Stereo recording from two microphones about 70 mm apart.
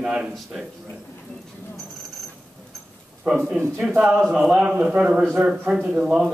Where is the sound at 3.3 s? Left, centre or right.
Centre.